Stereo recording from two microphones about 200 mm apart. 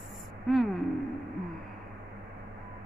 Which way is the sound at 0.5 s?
Centre (ahead or behind).